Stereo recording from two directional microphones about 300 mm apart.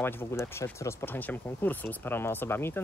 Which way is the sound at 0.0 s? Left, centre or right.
Centre.